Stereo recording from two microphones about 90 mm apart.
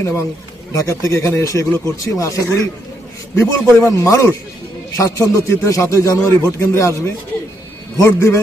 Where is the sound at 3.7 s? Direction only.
35° left (ahead or behind).